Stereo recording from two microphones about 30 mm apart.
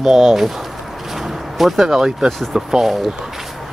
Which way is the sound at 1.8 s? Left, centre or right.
Centre.